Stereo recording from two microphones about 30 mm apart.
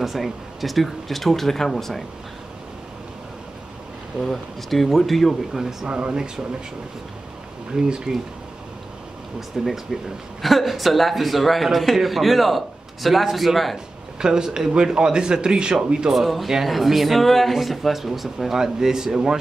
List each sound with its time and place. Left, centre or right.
0.0 s speech: centre
4.2 s a man's voice: centre
5.6 s speech: centre
5.9 s speech: right
8.1 s speech: right
9.6 s a man's voice: centre
14.2 s speech: right
16.1 s a man's voice: centre
18.6 s speech: centre